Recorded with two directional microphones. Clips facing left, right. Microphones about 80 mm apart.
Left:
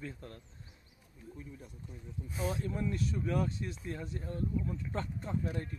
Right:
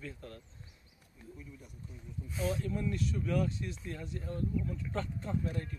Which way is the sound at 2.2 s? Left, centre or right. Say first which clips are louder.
Right 1 dB; left.